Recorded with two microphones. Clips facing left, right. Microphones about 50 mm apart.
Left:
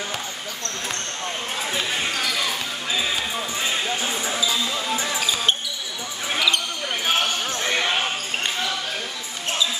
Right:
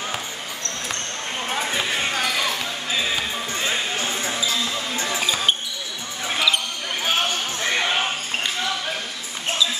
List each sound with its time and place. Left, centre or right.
1.5 s basketball bounce: centre
4.0 s basketball bounce: centre
6.2 s basketball bounce: centre